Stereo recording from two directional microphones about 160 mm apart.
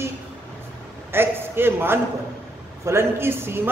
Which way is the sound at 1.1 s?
15° right (ahead or behind).